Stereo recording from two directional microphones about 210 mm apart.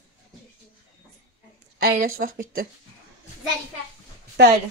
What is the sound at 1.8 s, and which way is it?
Speech, 45° right (ahead or behind).